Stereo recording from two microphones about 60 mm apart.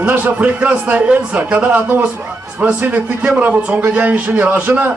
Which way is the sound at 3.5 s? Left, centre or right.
Centre.